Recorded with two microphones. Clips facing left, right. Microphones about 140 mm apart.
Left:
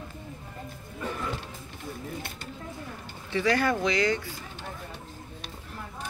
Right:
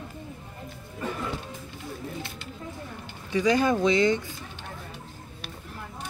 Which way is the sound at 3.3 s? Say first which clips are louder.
Right 3 dB; 15° right (ahead or behind).